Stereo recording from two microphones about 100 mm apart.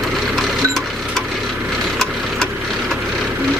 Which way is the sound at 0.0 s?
Centre (ahead or behind).